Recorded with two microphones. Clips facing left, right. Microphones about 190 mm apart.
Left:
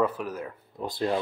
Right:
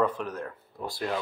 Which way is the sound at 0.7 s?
20° left (ahead or behind).